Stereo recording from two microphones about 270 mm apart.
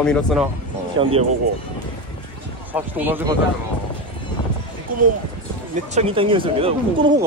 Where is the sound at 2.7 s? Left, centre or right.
Centre.